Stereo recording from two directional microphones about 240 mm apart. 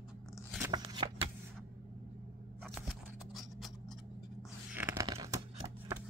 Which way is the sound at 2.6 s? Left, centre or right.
Centre.